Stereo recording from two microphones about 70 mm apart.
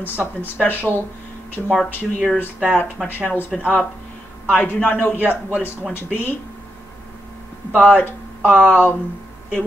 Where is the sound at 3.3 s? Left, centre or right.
Left.